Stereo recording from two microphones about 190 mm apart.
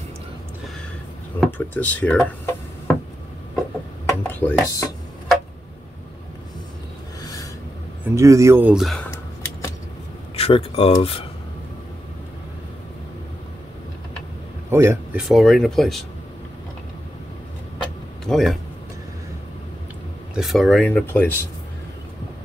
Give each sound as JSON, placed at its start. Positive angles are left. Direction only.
{"t": 1.4, "sound": "speech", "side_deg": 10}
{"t": 4.0, "sound": "chopping", "side_deg": 10}
{"t": 7.2, "sound": "filing", "side_deg": 20}
{"t": 8.1, "sound": "speech", "side_deg": -15}
{"t": 9.1, "sound": "a sound", "side_deg": 15}
{"t": 10.3, "sound": "speech", "side_deg": 30}
{"t": 14.7, "sound": "speech", "side_deg": -15}
{"t": 15.2, "sound": "speech", "side_deg": 0}
{"t": 18.2, "sound": "a man's voice", "side_deg": 0}
{"t": 20.3, "sound": "speech", "side_deg": 0}